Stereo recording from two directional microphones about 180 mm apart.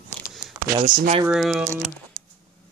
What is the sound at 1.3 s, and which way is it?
Speech, centre (ahead or behind).